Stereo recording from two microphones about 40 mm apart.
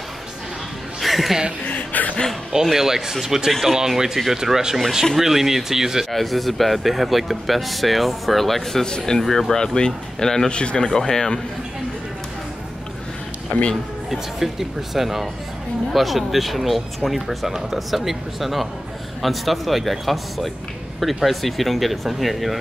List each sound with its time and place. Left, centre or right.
1.0 s chuckle: centre
1.7 s chuckle: left
2.5 s speech: centre
6.1 s speech: centre
8.8 s speech: centre
10.5 s speech: left
13.5 s speech: left
14.1 s speech: centre